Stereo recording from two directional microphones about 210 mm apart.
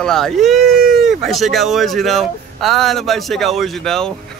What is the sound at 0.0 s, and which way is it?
Speech, centre (ahead or behind).